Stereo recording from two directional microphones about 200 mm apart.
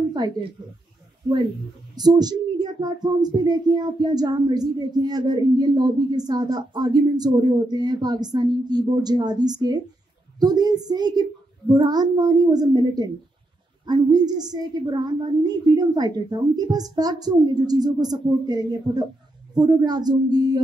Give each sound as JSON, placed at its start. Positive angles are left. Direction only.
{"t": 0.2, "sound": "speech", "side_deg": -20}
{"t": 2.0, "sound": "speech", "side_deg": -20}